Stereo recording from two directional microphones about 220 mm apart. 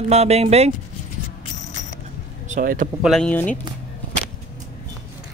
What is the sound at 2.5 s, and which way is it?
Speech, 35° right (ahead or behind).